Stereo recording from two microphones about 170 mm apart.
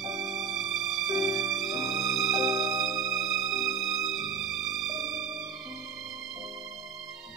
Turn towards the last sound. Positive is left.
turn(degrees=0)  # may be behind; listen again after turning